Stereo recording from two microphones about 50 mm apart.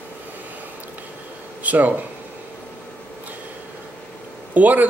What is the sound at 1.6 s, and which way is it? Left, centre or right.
Speech, right.